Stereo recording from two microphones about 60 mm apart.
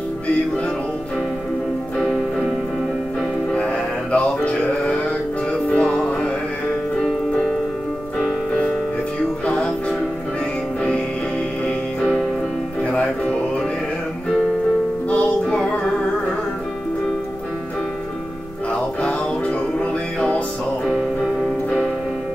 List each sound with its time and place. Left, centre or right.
4.1 s music: centre
15.0 s music: left
20.2 s music: centre